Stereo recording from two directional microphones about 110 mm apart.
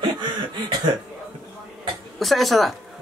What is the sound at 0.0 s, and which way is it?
Cough, 45° right (ahead or behind).